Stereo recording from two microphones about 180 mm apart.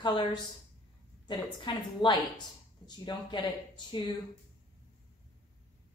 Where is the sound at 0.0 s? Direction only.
25° left (ahead or behind).